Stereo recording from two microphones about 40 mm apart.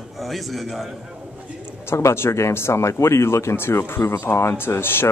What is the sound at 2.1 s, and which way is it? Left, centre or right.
Speech, left.